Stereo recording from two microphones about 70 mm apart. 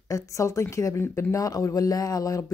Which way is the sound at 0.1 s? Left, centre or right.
Left.